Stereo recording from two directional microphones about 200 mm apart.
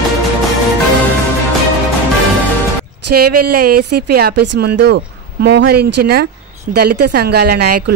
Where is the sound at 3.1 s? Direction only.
50° right (ahead or behind).